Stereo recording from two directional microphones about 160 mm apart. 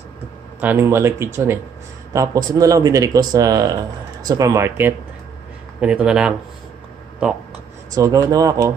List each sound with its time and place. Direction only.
0.6 s speech: 15° right (ahead or behind)
7.9 s speech: 20° right (ahead or behind)